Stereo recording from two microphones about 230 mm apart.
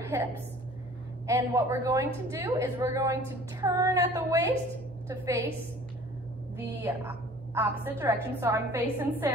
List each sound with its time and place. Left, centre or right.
1.2 s a woman's voice: centre
6.6 s a woman's voice: centre